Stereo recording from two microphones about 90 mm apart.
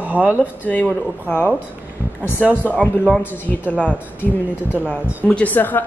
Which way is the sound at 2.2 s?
25° left (ahead or behind).